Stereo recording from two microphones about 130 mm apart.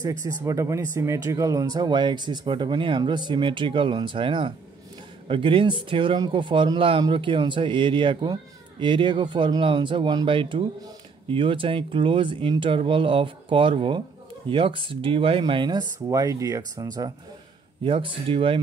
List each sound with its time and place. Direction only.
0.0 s speech: 25° right (ahead or behind)
17.8 s speech: 45° right (ahead or behind)